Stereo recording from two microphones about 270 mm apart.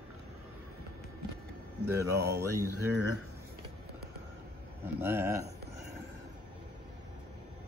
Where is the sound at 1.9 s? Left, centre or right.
Centre.